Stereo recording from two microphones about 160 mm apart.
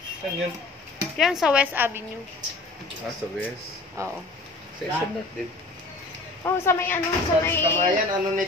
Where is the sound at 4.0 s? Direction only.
20° right (ahead or behind).